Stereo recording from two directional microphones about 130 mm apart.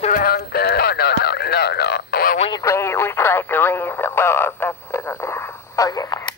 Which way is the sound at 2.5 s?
20° left (ahead or behind).